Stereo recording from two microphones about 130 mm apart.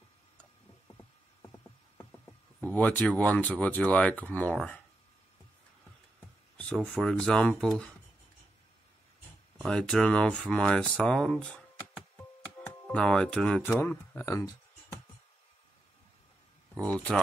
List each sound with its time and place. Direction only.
2.6 s speech: 15° left (ahead or behind)
6.5 s a sound: 10° left (ahead or behind)
6.8 s speech: 5° right (ahead or behind)
7.1 s speech: 5° left (ahead or behind)
9.6 s speech: 5° left (ahead or behind); by 14.5 s 20° left (ahead or behind)